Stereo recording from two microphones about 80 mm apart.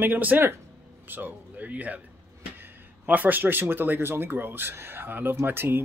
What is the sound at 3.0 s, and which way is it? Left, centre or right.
Speech, right.